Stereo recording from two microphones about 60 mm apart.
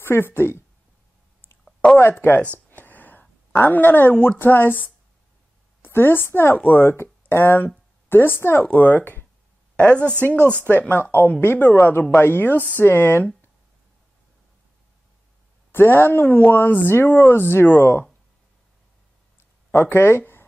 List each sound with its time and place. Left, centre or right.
0.0 s speech: left
1.6 s a sound: centre
2.1 s speech: left
2.7 s a sound: left
4.4 s a woman's voice: left
10.2 s speech: left
15.7 s speech: left
19.7 s speech: left